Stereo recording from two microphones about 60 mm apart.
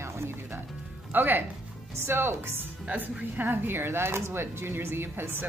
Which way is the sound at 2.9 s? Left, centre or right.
Right.